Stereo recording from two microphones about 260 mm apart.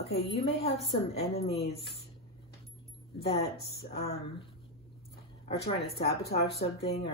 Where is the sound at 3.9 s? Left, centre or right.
Left.